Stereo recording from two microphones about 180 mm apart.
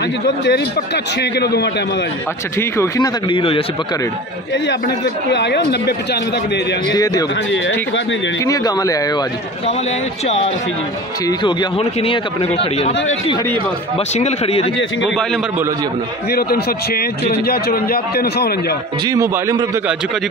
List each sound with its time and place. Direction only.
0.5 s a man's voice: 70° left (ahead or behind)
2.8 s speech: 25° left (ahead or behind)
4.6 s a man's voice: 75° left (ahead or behind)
6.9 s speech: 20° left (ahead or behind)
8.5 s speech: 20° left (ahead or behind)
10.2 s speech: 35° left (ahead or behind)
11.8 s speech: 30° left (ahead or behind)
13.9 s speech: 35° left (ahead or behind)
16.3 s a man's voice: 60° left (ahead or behind)
19.0 s a man's voice: 15° right (ahead or behind)